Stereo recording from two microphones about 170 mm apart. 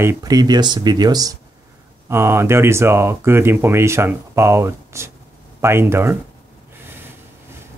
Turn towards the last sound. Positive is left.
turn(degrees=-15)  # may be behind; listen again after turning